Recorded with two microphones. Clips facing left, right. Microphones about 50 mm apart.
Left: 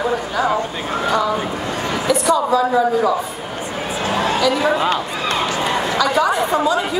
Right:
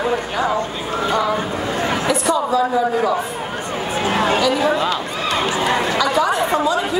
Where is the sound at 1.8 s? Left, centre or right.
Centre.